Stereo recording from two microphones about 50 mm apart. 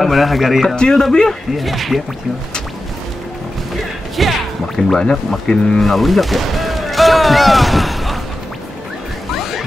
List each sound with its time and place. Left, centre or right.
0.0 s speech: centre
0.7 s speech: centre
1.6 s speech: centre
4.2 s speech: centre
4.9 s speech: centre
5.9 s artillery fire: centre